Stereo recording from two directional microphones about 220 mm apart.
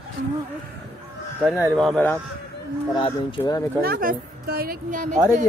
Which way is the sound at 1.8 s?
Centre (ahead or behind).